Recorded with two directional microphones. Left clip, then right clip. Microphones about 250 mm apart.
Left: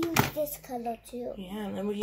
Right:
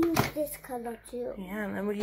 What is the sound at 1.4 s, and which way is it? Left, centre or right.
Speech, centre.